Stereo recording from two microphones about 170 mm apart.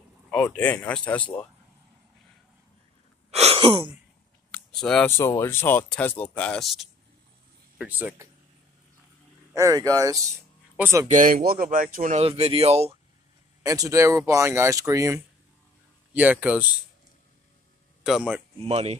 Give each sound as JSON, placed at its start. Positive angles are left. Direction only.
{"t": 0.3, "sound": "speech", "side_deg": 10}
{"t": 3.3, "sound": "a sound", "side_deg": -40}
{"t": 4.5, "sound": "a sound", "side_deg": 5}
{"t": 5.1, "sound": "speech", "side_deg": 15}
{"t": 9.5, "sound": "speech", "side_deg": -20}
{"t": 11.1, "sound": "speech", "side_deg": -50}
{"t": 12.2, "sound": "speech", "side_deg": -35}
{"t": 13.6, "sound": "speech", "side_deg": -20}
{"t": 16.2, "sound": "speech", "side_deg": -10}
{"t": 18.0, "sound": "speech", "side_deg": -5}
{"t": 18.7, "sound": "speech", "side_deg": -40}